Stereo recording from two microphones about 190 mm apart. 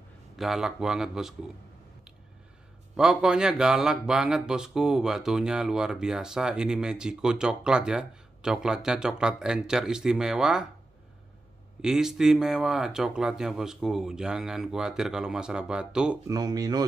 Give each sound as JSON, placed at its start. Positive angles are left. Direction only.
{"t": 0.4, "sound": "speech", "side_deg": 0}
{"t": 3.0, "sound": "speech", "side_deg": -5}
{"t": 11.8, "sound": "speech", "side_deg": -5}
{"t": 16.3, "sound": "speech", "side_deg": -20}